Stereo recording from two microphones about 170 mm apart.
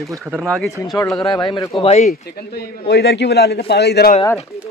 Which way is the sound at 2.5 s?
70° left (ahead or behind).